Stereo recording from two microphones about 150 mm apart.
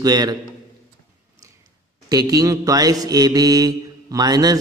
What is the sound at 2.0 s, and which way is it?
Mantra, 25° right (ahead or behind).